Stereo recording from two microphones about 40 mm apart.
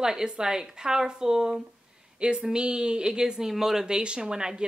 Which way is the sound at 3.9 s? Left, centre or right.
Right.